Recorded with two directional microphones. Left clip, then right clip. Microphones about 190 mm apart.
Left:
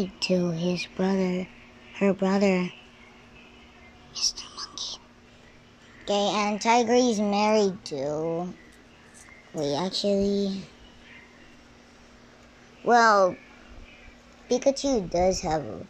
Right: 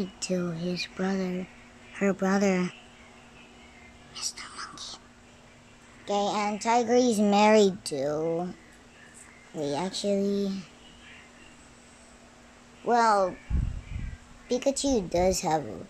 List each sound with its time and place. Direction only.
0.0 s speech: centre (ahead or behind)
4.4 s speech: 5° right (ahead or behind)
6.0 s a child's voice: 5° left (ahead or behind)
7.0 s a child's voice: 15° right (ahead or behind)
9.6 s speech: 5° left (ahead or behind)
12.8 s speech: 5° left (ahead or behind)
14.5 s a woman's voice: 10° right (ahead or behind)